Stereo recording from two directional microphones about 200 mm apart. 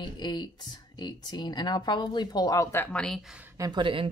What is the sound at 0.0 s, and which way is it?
Speech, 20° left (ahead or behind).